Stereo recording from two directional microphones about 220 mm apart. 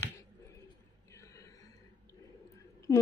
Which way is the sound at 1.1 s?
15° left (ahead or behind).